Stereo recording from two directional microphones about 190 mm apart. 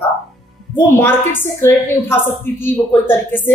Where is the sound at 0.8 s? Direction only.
10° left (ahead or behind).